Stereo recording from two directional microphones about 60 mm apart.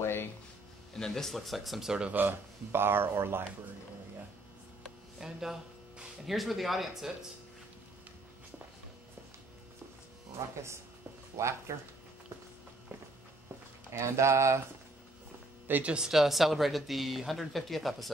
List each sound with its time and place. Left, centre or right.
0.0 s a sound: left
0.9 s speech: centre
2.0 s speech: right
5.2 s a man's voice: centre
11.3 s speech: right
13.9 s speech: right
15.6 s speech: right
15.9 s speech: centre